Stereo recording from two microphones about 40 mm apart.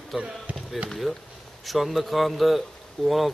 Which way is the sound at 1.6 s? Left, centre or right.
Centre.